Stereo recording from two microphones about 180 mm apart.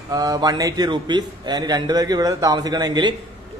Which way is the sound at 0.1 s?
20° right (ahead or behind).